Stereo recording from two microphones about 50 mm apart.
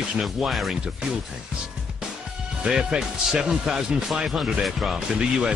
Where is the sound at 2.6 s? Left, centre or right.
Centre.